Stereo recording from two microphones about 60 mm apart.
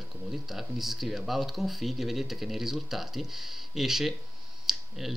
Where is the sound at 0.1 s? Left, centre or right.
Centre.